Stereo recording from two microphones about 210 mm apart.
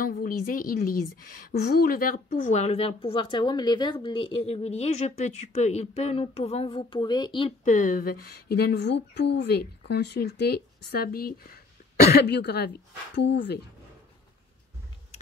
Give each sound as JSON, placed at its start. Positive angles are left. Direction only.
{"t": 0.0, "sound": "a woman's voice", "side_deg": 40}
{"t": 7.6, "sound": "speech", "side_deg": 35}